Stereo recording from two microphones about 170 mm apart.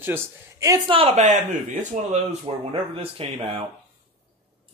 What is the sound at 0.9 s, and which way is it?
A man's voice, 40° right (ahead or behind).